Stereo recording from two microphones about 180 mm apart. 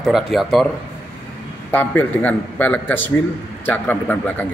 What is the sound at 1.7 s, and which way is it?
Speech, 10° left (ahead or behind).